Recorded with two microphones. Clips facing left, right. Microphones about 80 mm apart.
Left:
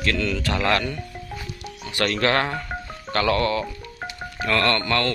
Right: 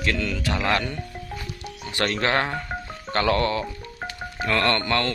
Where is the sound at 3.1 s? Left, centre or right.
Right.